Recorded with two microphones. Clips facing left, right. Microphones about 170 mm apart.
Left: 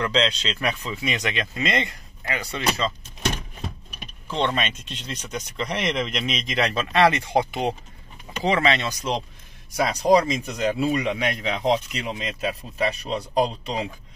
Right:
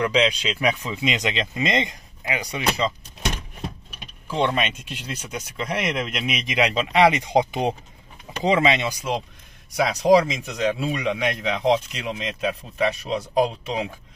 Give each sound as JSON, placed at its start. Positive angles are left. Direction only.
{"t": 0.0, "sound": "speech", "side_deg": -10}
{"t": 4.3, "sound": "speech", "side_deg": -10}